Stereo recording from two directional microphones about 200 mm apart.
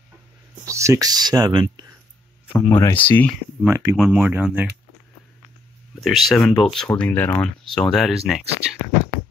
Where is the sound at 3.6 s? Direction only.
15° right (ahead or behind).